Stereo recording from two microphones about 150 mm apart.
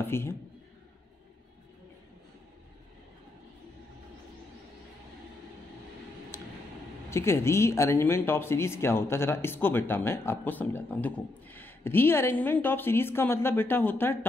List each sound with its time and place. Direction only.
0.0 s a man's voice: 15° left (ahead or behind)
7.1 s speech: 20° left (ahead or behind)